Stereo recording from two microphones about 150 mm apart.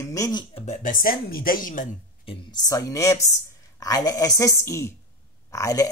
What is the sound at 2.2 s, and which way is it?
A woman's voice, 25° left (ahead or behind).